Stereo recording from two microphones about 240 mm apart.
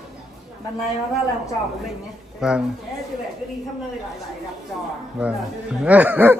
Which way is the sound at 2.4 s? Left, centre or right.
Centre.